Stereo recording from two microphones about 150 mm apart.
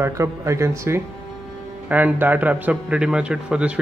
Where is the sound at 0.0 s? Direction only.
20° right (ahead or behind).